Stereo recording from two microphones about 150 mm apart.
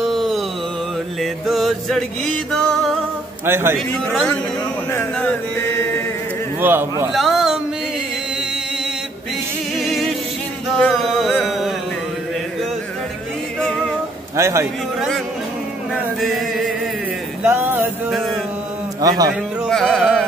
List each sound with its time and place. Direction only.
0.0 s music: centre (ahead or behind)
3.4 s a man's voice: 15° right (ahead or behind)
6.6 s a man's voice: 15° right (ahead or behind)
7.1 s a sound: centre (ahead or behind)
9.8 s music: centre (ahead or behind)
11.4 s a sound: centre (ahead or behind)
13.6 s music: 5° left (ahead or behind)
14.3 s a man's voice: 20° right (ahead or behind)
15.0 s yodeling: centre (ahead or behind)
15.9 s chant: centre (ahead or behind)
17.4 s music: 15° right (ahead or behind)
18.1 s mantra: centre (ahead or behind)
18.9 s a man's voice: 25° right (ahead or behind)
19.6 s music: centre (ahead or behind)